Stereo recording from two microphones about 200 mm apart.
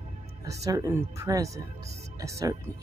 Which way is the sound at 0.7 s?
15° right (ahead or behind).